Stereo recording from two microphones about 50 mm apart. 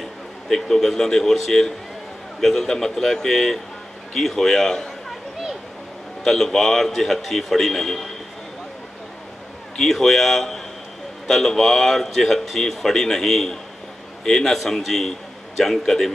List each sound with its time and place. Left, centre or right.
0.0 s a man's voice: centre
6.2 s a man's voice: centre
9.8 s a man's voice: centre